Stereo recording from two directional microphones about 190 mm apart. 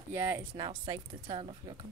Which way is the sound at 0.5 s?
25° right (ahead or behind).